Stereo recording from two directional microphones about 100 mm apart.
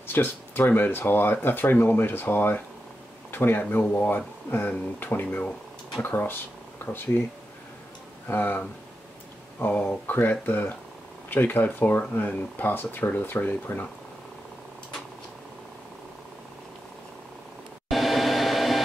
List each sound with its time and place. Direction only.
0.1 s speech: 20° left (ahead or behind)
8.3 s speech: 20° left (ahead or behind)
17.8 s train: centre (ahead or behind)